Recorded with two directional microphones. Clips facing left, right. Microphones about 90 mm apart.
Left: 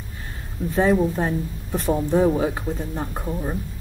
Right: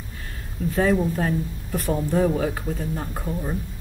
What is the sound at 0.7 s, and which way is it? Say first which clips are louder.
Speech: left 2 dB; 20° left (ahead or behind).